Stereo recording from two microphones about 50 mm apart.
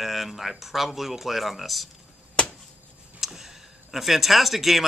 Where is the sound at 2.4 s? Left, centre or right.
Left.